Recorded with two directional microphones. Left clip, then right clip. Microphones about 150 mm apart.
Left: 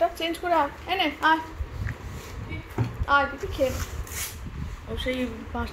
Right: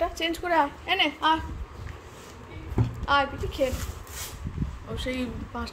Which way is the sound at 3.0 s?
15° right (ahead or behind).